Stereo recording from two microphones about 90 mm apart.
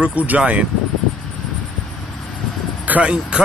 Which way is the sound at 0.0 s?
15° right (ahead or behind).